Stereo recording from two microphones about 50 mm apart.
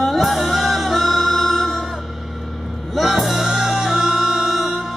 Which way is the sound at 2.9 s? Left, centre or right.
Centre.